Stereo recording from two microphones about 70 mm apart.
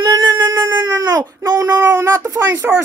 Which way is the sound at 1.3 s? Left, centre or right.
Right.